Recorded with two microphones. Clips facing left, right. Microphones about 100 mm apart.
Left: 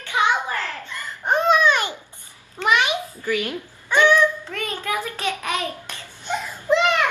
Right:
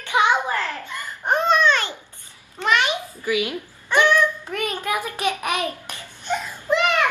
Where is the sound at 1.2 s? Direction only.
Centre (ahead or behind).